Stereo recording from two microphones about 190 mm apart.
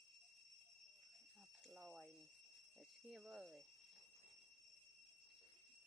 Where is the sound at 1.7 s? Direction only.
Centre (ahead or behind).